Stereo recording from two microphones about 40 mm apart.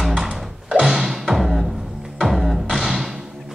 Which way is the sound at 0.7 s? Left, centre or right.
Centre.